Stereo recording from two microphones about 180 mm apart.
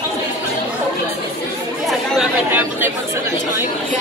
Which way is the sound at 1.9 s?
Centre (ahead or behind).